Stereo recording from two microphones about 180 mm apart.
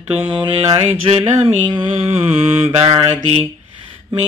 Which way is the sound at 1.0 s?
30° right (ahead or behind).